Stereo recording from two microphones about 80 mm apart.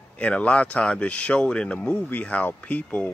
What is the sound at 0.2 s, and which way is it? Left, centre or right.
Speech, centre.